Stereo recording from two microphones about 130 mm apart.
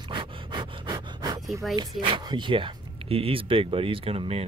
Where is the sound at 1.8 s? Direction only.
35° right (ahead or behind).